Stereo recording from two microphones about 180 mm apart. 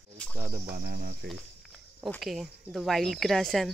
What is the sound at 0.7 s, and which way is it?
Speech, 55° right (ahead or behind).